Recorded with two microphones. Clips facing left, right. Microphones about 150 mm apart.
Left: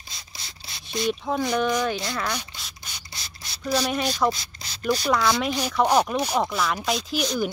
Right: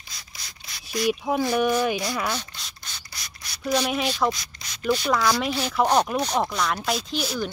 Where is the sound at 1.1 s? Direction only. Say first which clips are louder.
Right 2 dB; 10° right (ahead or behind).